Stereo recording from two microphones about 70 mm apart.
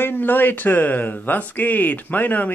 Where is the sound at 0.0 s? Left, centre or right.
Left.